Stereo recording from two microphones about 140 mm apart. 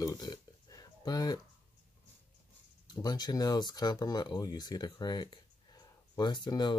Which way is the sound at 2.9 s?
30° left (ahead or behind).